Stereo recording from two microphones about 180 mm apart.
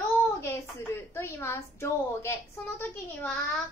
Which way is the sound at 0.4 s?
15° left (ahead or behind).